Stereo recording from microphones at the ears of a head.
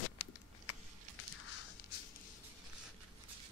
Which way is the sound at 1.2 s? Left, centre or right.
Left.